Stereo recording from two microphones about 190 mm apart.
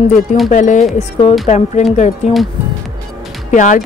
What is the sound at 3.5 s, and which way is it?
Speech, 40° left (ahead or behind).